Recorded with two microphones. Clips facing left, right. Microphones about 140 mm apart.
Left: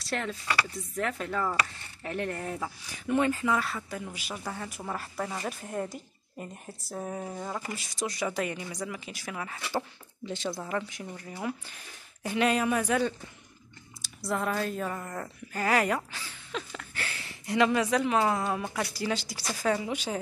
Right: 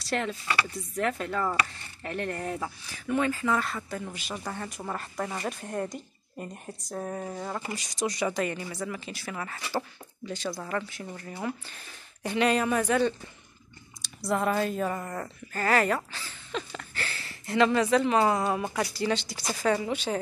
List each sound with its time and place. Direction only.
0.0 s speech: centre (ahead or behind)
3.1 s speech: 20° left (ahead or behind)
3.4 s speech: 5° left (ahead or behind)
10.2 s speech: 25° left (ahead or behind)
10.5 s speech: 10° left (ahead or behind)
15.5 s speech: 10° left (ahead or behind)